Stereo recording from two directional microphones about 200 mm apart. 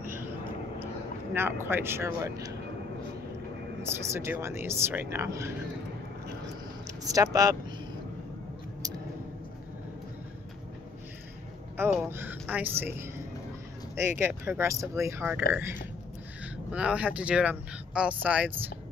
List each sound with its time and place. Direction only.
1.3 s speech: 10° right (ahead or behind)
4.1 s speech: 15° right (ahead or behind)
7.1 s speech: 15° right (ahead or behind)
11.9 s speech: 10° right (ahead or behind)